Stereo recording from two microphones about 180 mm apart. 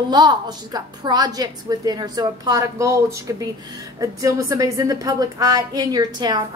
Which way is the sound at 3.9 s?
20° right (ahead or behind).